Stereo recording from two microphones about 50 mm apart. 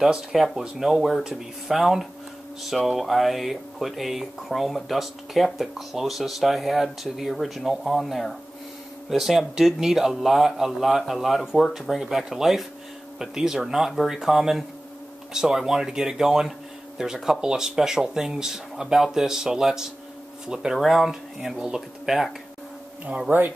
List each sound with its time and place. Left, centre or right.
0.0 s speech: centre
20.7 s speech: centre
23.0 s speech: right